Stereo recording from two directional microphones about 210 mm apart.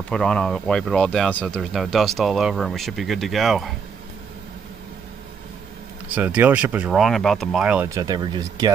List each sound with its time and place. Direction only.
0.1 s speech: 5° left (ahead or behind)
6.1 s speech: 10° right (ahead or behind)